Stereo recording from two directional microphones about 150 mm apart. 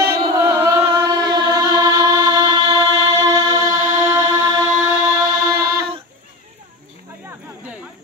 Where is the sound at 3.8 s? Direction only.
55° right (ahead or behind).